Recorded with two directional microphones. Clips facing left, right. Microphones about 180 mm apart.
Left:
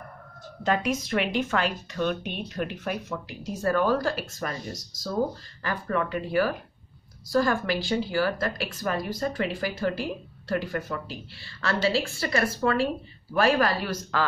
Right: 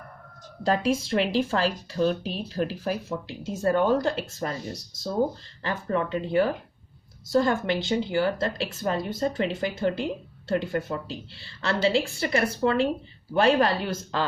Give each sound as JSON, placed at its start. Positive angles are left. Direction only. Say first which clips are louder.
{"t": 0.7, "sound": "a woman's voice", "louder": "right 2 dB", "side_deg": -30}
{"t": 5.6, "sound": "a woman's voice", "louder": "right 1 dB", "side_deg": -25}